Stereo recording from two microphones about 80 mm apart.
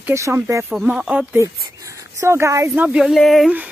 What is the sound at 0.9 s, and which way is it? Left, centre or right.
Speech, centre.